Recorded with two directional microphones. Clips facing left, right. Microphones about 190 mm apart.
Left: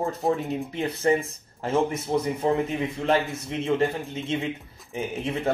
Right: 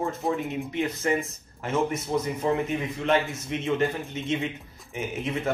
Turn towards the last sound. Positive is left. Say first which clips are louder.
# left 1 dB
turn(degrees=30)  # may be behind; listen again after turning